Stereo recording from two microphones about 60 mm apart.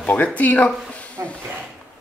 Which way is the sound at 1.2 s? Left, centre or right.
Right.